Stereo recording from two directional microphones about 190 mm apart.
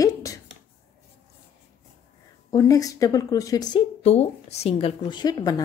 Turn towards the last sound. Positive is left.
turn(degrees=20)  # may be behind; listen again after turning